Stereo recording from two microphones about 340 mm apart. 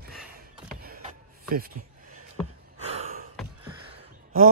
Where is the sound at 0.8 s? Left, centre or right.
Right.